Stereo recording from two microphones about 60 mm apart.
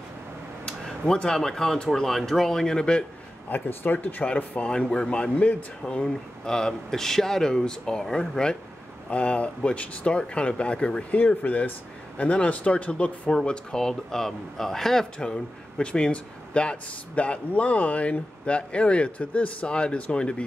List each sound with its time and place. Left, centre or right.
0.7 s speech: centre
3.4 s speech: left
6.0 s speech: centre